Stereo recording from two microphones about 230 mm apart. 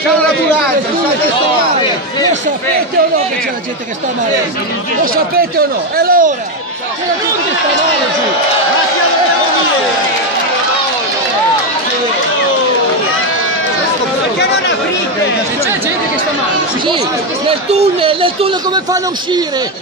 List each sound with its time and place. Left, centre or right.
5.1 s speech: right
17.5 s a man's voice: right